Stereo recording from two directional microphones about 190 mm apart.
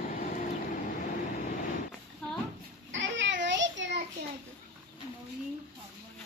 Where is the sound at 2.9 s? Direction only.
75° right (ahead or behind).